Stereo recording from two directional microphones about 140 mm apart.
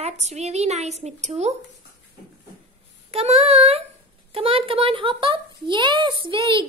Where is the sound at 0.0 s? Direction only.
50° right (ahead or behind).